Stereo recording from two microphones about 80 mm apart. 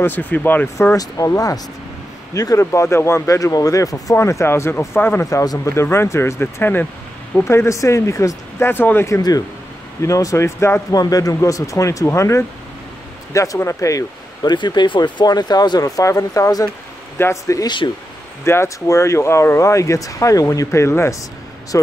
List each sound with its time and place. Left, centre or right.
0.0 s speech: left
0.9 s speech: left
5.2 s speech: left
5.8 s speech: left
7.4 s speech: left
9.1 s speech: left
10.9 s speech: left
14.4 s speech: left
15.8 s speech: left
17.6 s speech: left
18.4 s speech: left